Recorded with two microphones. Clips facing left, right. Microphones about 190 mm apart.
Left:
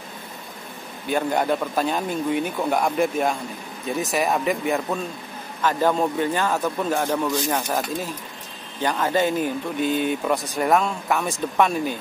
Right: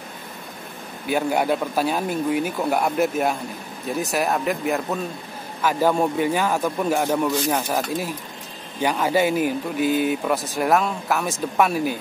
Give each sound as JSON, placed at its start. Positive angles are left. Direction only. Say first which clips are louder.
{"t": 1.0, "sound": "speech", "louder": "right 1 dB", "side_deg": -5}